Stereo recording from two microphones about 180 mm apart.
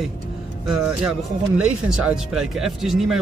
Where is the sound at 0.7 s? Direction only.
5° right (ahead or behind).